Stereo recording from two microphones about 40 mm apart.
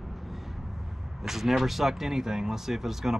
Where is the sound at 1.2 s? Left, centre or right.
Centre.